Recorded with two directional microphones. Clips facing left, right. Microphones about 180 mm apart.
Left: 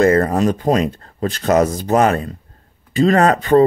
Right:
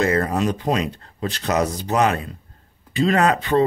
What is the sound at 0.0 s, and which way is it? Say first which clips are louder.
Speech: left 6 dB; 45° left (ahead or behind).